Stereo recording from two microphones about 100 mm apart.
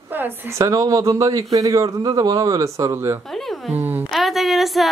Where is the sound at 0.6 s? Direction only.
35° right (ahead or behind).